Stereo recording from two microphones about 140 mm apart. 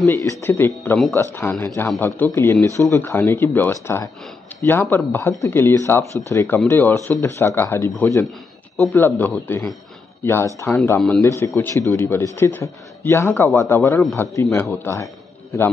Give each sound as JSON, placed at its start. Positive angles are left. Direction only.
{"t": 0.0, "sound": "a man's voice", "side_deg": 20}
{"t": 11.2, "sound": "a man's voice", "side_deg": 20}